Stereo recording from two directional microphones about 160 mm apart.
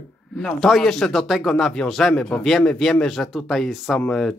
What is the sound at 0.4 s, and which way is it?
Speech, centre (ahead or behind).